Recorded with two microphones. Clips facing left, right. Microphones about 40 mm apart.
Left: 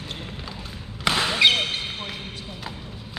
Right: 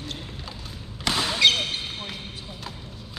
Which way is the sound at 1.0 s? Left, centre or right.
Left.